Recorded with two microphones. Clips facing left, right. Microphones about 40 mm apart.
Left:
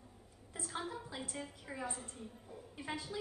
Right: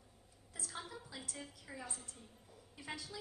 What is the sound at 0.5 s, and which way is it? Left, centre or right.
A woman's voice, left.